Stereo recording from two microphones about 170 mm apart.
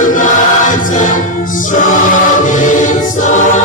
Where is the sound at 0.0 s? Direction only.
50° left (ahead or behind).